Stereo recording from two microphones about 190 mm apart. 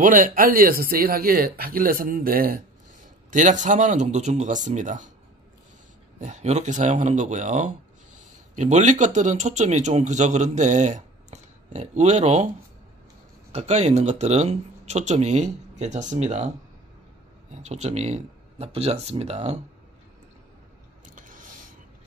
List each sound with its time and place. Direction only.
0.0 s speech: 45° right (ahead or behind)
6.1 s speech: 40° right (ahead or behind)
13.5 s speech: 35° right (ahead or behind)
21.0 s a sound: 45° right (ahead or behind)